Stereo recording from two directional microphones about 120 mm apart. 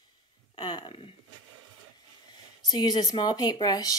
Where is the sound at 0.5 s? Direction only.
40° left (ahead or behind).